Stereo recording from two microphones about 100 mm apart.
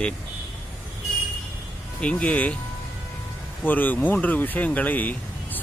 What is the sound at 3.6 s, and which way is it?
Speech, 15° left (ahead or behind).